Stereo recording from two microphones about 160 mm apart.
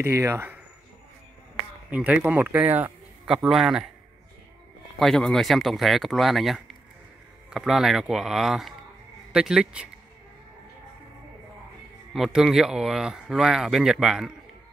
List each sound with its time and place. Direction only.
0.0 s speech: 15° right (ahead or behind)
1.9 s a man's voice: 10° right (ahead or behind)
4.9 s speech: 5° left (ahead or behind)
12.1 s speech: centre (ahead or behind)